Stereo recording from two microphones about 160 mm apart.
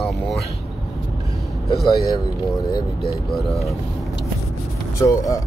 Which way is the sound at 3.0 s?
Centre (ahead or behind).